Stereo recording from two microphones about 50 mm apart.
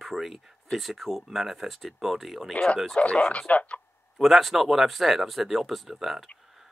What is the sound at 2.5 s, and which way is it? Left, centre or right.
Speech, left.